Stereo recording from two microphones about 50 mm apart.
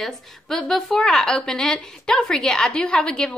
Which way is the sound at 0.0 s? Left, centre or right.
Centre.